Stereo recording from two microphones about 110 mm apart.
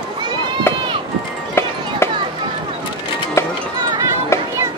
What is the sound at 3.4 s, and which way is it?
Music, 25° left (ahead or behind).